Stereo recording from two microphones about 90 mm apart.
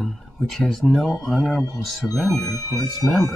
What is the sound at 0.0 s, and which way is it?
Speech, centre (ahead or behind).